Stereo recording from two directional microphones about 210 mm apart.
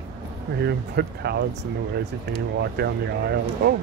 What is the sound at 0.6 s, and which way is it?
Speech, 50° right (ahead or behind).